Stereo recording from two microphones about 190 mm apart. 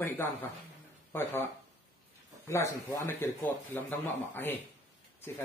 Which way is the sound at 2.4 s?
15° left (ahead or behind).